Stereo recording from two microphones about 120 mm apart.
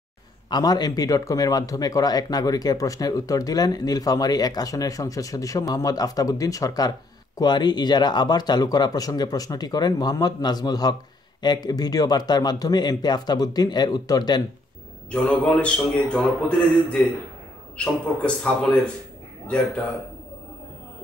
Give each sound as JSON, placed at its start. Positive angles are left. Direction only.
{"t": 0.5, "sound": "speech", "side_deg": 35}
{"t": 15.0, "sound": "a man's voice", "side_deg": 10}
{"t": 17.7, "sound": "a man's voice", "side_deg": 5}